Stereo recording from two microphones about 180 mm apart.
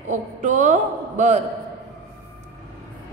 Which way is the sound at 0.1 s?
45° right (ahead or behind).